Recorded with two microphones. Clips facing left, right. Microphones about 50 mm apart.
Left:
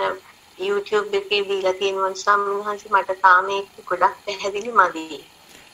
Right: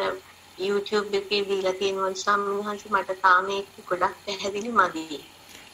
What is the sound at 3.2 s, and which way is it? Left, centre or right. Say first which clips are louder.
Speech: left 4 dB; left.